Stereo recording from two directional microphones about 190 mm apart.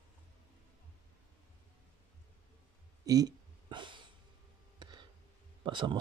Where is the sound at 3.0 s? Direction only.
20° right (ahead or behind).